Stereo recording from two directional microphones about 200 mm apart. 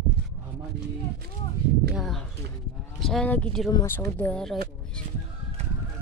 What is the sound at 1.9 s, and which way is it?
A woman's voice, centre (ahead or behind).